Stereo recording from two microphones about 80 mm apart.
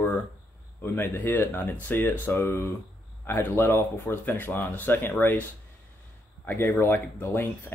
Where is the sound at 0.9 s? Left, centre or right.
Left.